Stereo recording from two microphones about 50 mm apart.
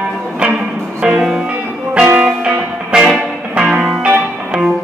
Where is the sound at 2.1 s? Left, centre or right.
Centre.